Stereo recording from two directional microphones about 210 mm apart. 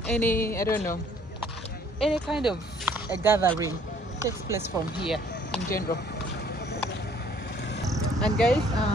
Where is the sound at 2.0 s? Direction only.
Centre (ahead or behind).